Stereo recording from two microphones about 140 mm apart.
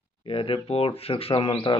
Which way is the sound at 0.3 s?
40° left (ahead or behind).